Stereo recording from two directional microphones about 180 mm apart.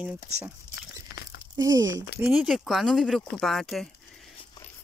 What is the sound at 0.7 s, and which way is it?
Dog, 60° left (ahead or behind).